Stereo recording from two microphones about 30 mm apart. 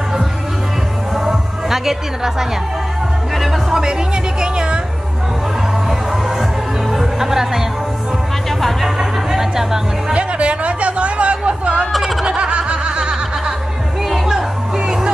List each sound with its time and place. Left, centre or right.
1.1 s music: centre
3.7 s speech: right
5.9 s music: centre
8.5 s music: centre
8.8 s music: centre
10.1 s music: right
11.9 s snicker: centre
12.4 s snicker: right
14.0 s music: centre